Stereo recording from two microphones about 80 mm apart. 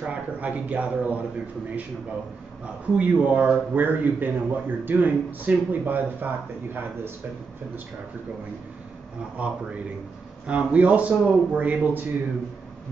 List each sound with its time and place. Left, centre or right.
0.0 s speech: centre
3.0 s a man's voice: centre
9.4 s speech: centre